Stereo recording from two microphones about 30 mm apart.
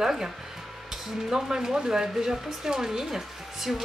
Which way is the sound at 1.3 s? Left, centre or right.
Centre.